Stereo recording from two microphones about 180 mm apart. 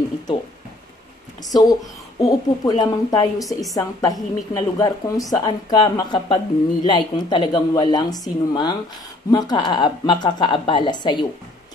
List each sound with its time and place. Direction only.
1.4 s a woman's voice: 20° left (ahead or behind)